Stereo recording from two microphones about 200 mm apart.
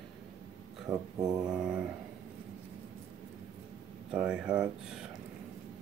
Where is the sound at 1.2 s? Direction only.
20° right (ahead or behind).